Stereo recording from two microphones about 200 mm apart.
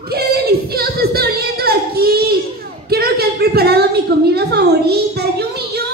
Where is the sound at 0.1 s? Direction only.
50° right (ahead or behind).